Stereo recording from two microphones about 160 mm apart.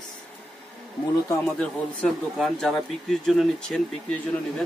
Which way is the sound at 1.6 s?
Centre (ahead or behind).